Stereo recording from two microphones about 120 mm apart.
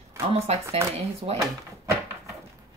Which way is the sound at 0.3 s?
55° right (ahead or behind).